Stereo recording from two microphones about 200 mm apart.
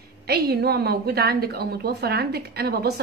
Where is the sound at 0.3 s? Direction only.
50° right (ahead or behind).